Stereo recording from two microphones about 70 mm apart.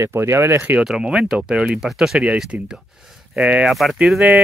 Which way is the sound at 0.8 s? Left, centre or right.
Centre.